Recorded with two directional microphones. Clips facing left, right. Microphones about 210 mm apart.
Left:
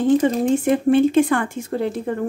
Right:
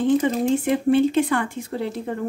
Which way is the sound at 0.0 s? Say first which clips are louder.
Left 3 dB; 45° left (ahead or behind).